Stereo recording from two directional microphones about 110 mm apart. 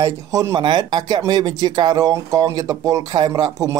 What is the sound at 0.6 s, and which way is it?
Speech, 45° right (ahead or behind).